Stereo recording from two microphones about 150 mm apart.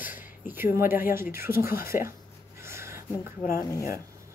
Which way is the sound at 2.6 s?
15° right (ahead or behind).